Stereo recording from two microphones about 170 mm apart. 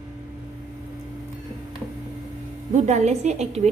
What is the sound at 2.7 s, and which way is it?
Speech, 45° right (ahead or behind).